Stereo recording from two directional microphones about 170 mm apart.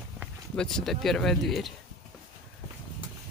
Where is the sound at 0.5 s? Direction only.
5° left (ahead or behind).